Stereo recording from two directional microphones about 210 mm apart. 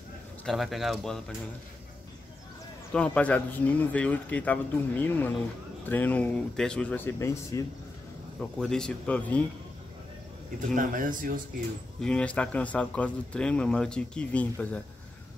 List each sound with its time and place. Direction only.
0.5 s speech: centre (ahead or behind)
2.9 s speech: 5° left (ahead or behind)
8.4 s speech: 5° left (ahead or behind)
10.7 s speech: 40° right (ahead or behind)
12.0 s speech: 5° left (ahead or behind)